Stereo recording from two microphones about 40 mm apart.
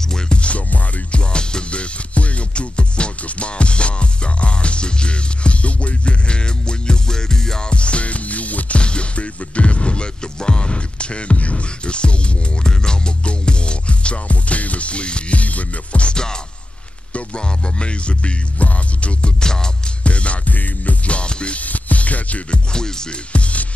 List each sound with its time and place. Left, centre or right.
0.1 s music: left
1.3 s music: left
7.7 s music: left
19.4 s music: centre
20.0 s music: left
21.5 s music: left
22.7 s music: centre
23.3 s music: left